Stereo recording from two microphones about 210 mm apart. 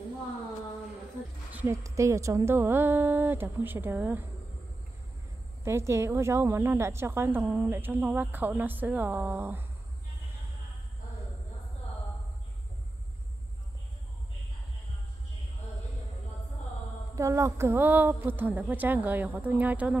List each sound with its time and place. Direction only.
1.5 s a woman's voice: 10° right (ahead or behind)
5.6 s a woman's voice: 15° right (ahead or behind)
17.1 s a woman's voice: 15° right (ahead or behind)